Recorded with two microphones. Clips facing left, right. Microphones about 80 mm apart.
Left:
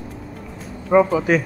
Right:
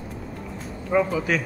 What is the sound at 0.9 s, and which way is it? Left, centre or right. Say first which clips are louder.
Speech: left 7 dB; left.